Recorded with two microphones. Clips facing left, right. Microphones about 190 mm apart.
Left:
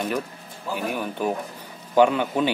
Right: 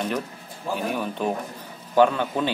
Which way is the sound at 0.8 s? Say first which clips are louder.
Left 1 dB; 5° left (ahead or behind).